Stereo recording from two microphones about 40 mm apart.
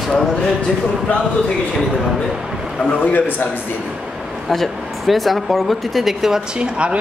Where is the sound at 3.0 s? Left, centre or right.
Left.